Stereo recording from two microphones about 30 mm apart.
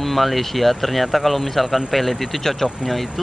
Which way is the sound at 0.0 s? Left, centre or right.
Centre.